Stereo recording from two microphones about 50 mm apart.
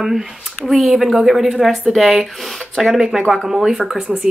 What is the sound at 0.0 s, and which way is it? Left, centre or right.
A woman's voice, centre.